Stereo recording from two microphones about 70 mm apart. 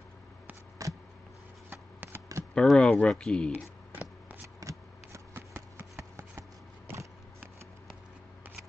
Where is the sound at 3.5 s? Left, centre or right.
Right.